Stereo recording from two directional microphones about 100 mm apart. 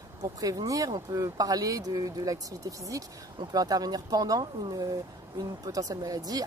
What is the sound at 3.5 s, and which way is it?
Speech, 40° right (ahead or behind).